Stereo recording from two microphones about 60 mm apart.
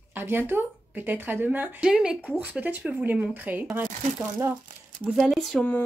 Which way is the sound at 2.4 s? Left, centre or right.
Right.